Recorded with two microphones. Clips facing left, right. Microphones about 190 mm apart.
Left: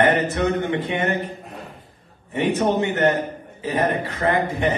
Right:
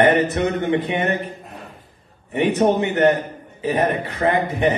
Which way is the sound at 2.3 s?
15° right (ahead or behind).